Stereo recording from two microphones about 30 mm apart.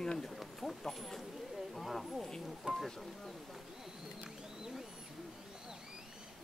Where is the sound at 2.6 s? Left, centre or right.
Right.